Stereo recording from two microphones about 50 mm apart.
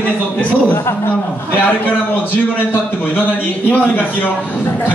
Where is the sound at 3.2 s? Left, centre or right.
Left.